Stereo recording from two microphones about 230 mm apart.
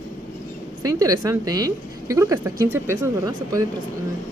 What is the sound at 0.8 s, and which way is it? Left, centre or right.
A woman's voice, centre.